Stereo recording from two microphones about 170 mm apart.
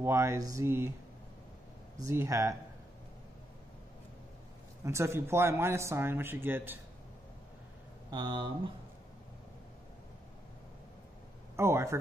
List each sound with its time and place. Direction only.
0.0 s speech: 15° right (ahead or behind)
2.0 s speech: 20° right (ahead or behind)
4.8 s speech: 15° right (ahead or behind)
8.1 s speech: 25° right (ahead or behind)
11.5 s speech: 15° right (ahead or behind)